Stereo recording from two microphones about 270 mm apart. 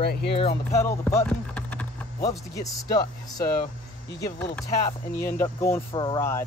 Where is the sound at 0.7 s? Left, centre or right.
Centre.